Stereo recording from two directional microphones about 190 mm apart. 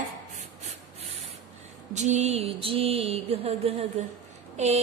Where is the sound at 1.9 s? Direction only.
40° right (ahead or behind).